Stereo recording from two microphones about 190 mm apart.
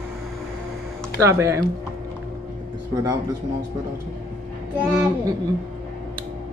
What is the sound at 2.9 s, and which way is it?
Speech, 15° right (ahead or behind).